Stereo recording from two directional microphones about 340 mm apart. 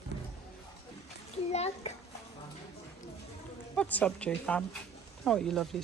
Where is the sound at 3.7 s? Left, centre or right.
Centre.